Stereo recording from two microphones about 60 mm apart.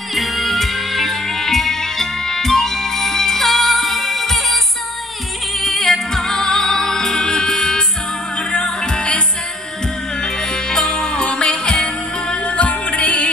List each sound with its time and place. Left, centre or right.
0.1 s music: centre
5.6 s music: centre
10.2 s music: centre